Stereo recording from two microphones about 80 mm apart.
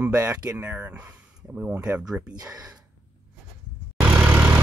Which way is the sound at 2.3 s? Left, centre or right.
Right.